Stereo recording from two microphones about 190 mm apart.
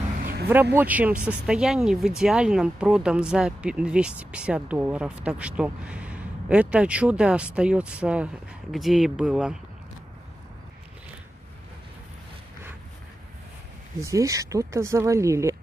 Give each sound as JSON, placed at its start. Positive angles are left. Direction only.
{"t": 0.2, "sound": "vehicle", "side_deg": -55}
{"t": 0.7, "sound": "speech", "side_deg": -10}
{"t": 13.9, "sound": "speech", "side_deg": -15}